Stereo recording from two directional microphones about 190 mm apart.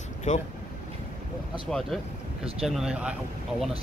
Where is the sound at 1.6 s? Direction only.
5° left (ahead or behind).